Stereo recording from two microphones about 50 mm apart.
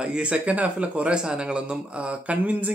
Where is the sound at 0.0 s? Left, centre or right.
Right.